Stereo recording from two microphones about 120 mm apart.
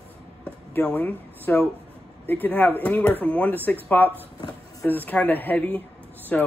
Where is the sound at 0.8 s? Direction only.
15° left (ahead or behind).